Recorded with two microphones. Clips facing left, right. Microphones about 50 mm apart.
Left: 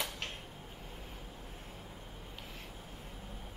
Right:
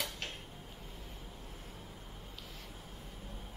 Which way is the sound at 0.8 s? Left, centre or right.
Left.